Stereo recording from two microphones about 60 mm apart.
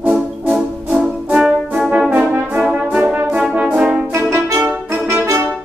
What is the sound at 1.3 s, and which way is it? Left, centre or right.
Brass instrument, centre.